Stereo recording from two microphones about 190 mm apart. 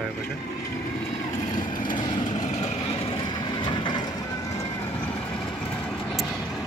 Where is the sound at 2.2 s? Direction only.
40° left (ahead or behind).